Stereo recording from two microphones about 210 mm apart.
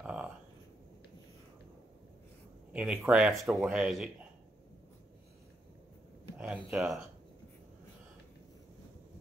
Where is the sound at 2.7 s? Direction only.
5° right (ahead or behind).